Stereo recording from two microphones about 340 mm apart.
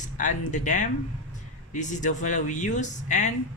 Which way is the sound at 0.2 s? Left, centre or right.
Left.